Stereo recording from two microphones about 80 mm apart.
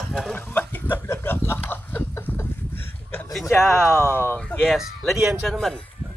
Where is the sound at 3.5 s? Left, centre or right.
Left.